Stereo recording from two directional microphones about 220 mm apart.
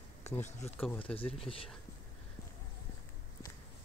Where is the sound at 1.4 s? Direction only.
25° left (ahead or behind).